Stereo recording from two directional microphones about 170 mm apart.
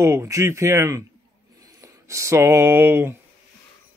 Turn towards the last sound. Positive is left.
turn(degrees=-10)  # may be behind; listen again after turning